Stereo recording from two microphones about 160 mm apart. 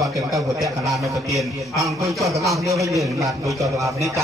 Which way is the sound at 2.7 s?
20° right (ahead or behind).